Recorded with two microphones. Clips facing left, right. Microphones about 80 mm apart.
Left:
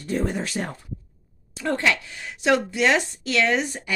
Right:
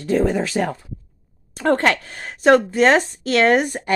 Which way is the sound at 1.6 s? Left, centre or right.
Right.